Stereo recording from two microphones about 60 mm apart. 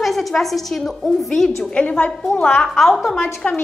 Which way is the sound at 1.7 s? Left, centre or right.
Left.